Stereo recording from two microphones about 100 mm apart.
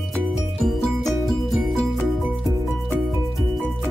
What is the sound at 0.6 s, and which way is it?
Music, 5° left (ahead or behind).